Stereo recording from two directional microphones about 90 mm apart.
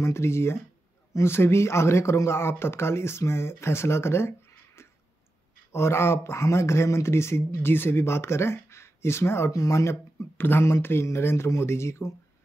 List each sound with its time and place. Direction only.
0.0 s speech: 30° left (ahead or behind)
5.7 s speech: 30° left (ahead or behind)